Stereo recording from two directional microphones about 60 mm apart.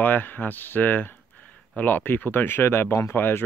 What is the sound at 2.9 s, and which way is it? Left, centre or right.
Speech, left.